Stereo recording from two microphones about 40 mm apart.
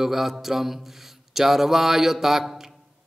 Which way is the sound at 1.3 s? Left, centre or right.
Centre.